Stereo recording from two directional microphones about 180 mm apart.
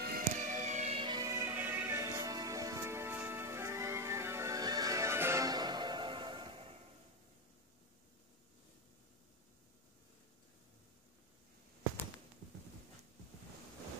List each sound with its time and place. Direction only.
0.4 s music: 40° right (ahead or behind)